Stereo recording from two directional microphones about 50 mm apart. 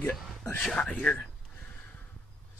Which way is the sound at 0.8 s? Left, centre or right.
Centre.